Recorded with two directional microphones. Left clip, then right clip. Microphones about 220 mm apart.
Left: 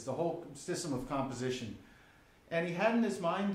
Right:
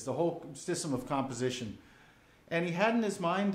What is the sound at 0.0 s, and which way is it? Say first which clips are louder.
Speech: right 3 dB; 40° right (ahead or behind).